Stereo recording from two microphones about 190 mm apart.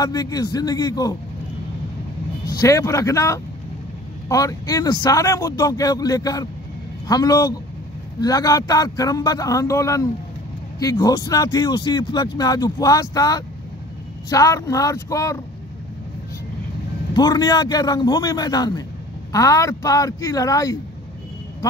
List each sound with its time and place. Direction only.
0.0 s speech: 20° left (ahead or behind)
2.4 s speech: 20° left (ahead or behind)
17.1 s speech: 20° left (ahead or behind)